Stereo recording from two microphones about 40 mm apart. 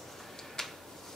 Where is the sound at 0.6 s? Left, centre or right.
Centre.